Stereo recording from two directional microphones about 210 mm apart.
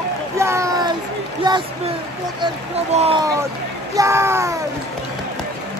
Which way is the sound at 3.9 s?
15° right (ahead or behind).